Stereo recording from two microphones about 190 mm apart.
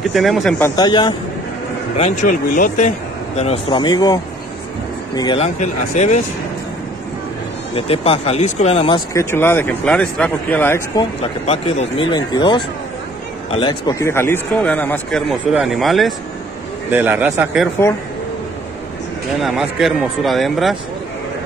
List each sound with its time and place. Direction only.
0.0 s speech: centre (ahead or behind)
0.7 s speech: 20° left (ahead or behind)
2.0 s speech: 40° left (ahead or behind)
3.3 s speech: 35° left (ahead or behind)
3.8 s speech: 20° left (ahead or behind)
5.4 s speech: 35° left (ahead or behind)
7.7 s speech: 30° left (ahead or behind)
8.9 s a man's voice: 15° left (ahead or behind)
11.4 s a man's voice: 30° left (ahead or behind); by 17.6 s 10° right (ahead or behind)
19.4 s speech: centre (ahead or behind)